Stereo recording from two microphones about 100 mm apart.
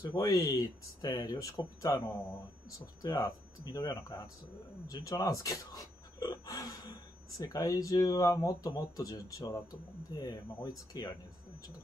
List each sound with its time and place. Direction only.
0.1 s speech: 35° left (ahead or behind)
3.0 s speech: 35° left (ahead or behind)